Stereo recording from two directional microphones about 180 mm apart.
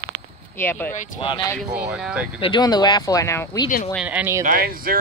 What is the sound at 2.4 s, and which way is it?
Speech, 25° left (ahead or behind).